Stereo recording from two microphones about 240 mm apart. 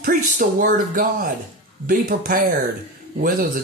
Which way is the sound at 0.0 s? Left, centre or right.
Right.